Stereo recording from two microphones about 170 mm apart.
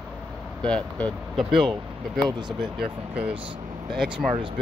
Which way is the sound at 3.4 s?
30° right (ahead or behind).